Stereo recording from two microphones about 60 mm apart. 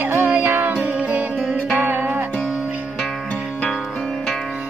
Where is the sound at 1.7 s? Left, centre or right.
Right.